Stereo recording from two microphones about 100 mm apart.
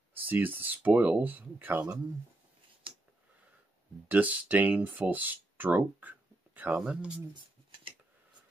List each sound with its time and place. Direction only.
0.1 s speech: 20° right (ahead or behind)
4.1 s speech: 15° right (ahead or behind)